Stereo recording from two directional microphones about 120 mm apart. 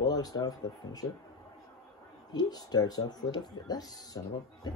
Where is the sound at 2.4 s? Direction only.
35° left (ahead or behind).